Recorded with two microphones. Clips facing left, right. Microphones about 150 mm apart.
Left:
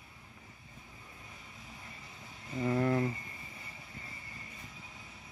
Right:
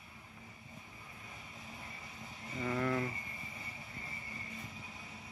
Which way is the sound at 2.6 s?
30° left (ahead or behind).